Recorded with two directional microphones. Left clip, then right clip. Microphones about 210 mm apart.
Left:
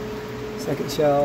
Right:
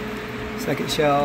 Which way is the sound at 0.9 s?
10° left (ahead or behind).